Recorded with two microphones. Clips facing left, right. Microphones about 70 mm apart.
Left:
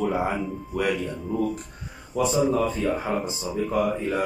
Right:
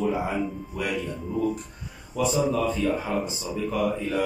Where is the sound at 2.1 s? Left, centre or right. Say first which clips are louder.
Left 2 dB; left.